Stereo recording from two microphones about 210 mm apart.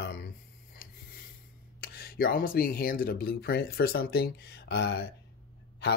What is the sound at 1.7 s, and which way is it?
Speech, 45° left (ahead or behind).